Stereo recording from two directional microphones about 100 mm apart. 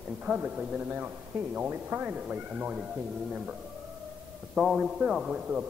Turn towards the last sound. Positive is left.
turn(degrees=-10)  # may be behind; listen again after turning